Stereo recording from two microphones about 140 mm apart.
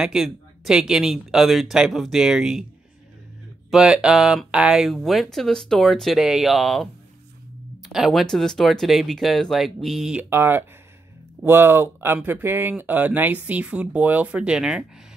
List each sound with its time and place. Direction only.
0.0 s speech: 5° right (ahead or behind)
3.7 s speech: 5° right (ahead or behind)
10.3 s speech: 15° right (ahead or behind)